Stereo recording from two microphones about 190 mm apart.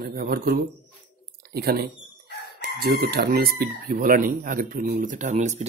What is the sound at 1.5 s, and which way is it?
Speech, 55° right (ahead or behind).